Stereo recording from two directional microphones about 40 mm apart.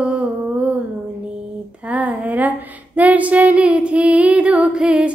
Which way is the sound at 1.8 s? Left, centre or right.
Right.